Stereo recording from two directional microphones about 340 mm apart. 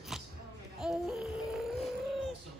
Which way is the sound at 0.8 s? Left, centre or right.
Centre.